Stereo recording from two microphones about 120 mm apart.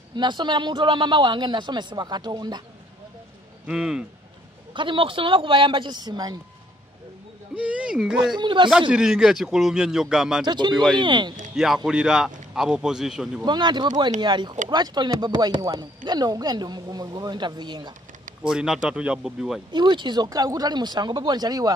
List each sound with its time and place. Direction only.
0.1 s speech: 40° right (ahead or behind)
3.6 s speech: 5° right (ahead or behind)
4.7 s speech: 45° right (ahead or behind)
7.5 s speech: 10° right (ahead or behind)
8.4 s speech: 40° right (ahead or behind)
8.9 s a man's voice: 5° right (ahead or behind)
10.4 s speech: 40° right (ahead or behind)
10.7 s a man's voice: centre (ahead or behind)
11.0 s speech: 40° right (ahead or behind)
11.5 s a man's voice: centre (ahead or behind)
13.5 s speech: 40° right (ahead or behind)
18.4 s a man's voice: 5° right (ahead or behind)
19.7 s speech: 40° right (ahead or behind)